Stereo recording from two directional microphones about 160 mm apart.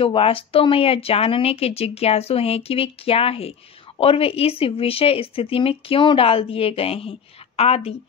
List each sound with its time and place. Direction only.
0.0 s speech: 35° left (ahead or behind)